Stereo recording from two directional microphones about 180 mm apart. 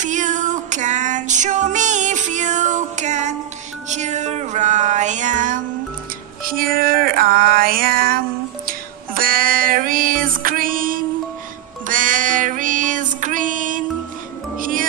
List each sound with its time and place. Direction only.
0.0 s music: 45° right (ahead or behind)
11.9 s female singing: 45° right (ahead or behind)
14.6 s music: 50° right (ahead or behind)